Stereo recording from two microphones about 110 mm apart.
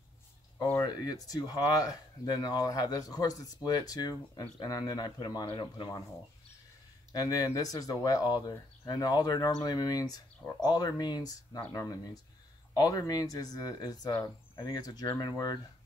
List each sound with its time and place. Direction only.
0.7 s speech: 35° left (ahead or behind)
7.1 s speech: 35° left (ahead or behind)